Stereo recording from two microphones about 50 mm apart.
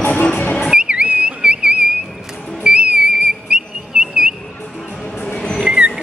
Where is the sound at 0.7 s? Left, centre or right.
Centre.